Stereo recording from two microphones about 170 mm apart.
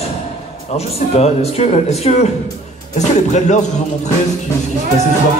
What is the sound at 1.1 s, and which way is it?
Speech, 40° left (ahead or behind).